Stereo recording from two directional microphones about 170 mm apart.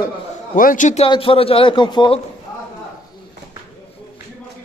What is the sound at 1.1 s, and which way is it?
A man's voice, 30° left (ahead or behind).